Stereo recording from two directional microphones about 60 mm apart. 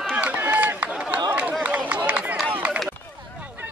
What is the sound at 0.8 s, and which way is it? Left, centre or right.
Chatter, right.